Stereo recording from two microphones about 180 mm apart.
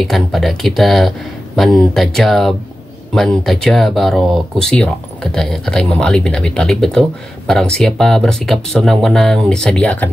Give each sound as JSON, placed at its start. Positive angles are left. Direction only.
{"t": 0.0, "sound": "speech", "side_deg": 0}